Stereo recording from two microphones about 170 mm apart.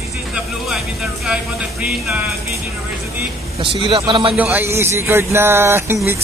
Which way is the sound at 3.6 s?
30° right (ahead or behind).